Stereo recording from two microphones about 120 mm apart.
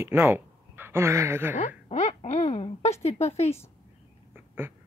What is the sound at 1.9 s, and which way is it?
Speech, 80° left.